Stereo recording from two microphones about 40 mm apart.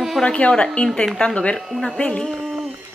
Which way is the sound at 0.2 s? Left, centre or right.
Centre.